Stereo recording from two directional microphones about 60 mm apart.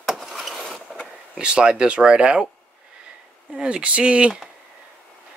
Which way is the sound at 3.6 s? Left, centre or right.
Centre.